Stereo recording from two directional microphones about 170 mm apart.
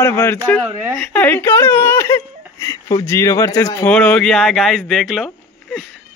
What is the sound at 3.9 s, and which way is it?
Speech, 5° left (ahead or behind).